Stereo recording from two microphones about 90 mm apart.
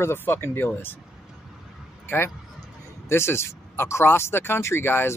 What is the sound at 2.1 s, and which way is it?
Speech, 25° left (ahead or behind).